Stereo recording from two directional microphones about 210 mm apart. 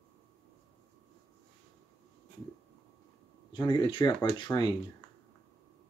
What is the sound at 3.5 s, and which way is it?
Speech, 20° left (ahead or behind).